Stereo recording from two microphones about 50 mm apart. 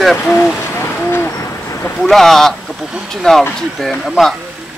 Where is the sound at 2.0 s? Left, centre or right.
Centre.